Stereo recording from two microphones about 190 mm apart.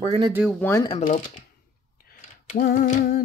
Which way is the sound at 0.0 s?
30° right (ahead or behind).